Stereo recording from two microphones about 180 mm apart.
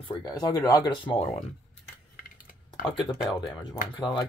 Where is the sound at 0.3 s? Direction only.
20° left (ahead or behind).